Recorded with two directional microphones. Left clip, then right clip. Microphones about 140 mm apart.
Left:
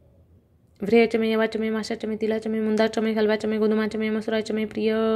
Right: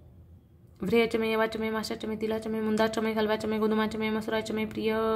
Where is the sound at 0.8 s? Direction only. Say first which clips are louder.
Left 6 dB; 25° left (ahead or behind).